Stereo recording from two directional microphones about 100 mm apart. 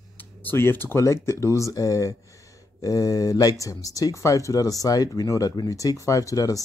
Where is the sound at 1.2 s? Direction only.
30° left (ahead or behind).